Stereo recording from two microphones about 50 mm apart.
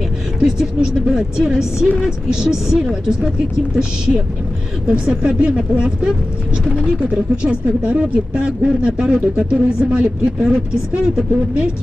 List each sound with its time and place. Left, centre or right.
0.4 s speech: centre
4.8 s speech: right
6.9 s speech: right